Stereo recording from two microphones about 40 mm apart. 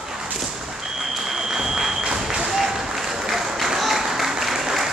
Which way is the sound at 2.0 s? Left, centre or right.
Centre.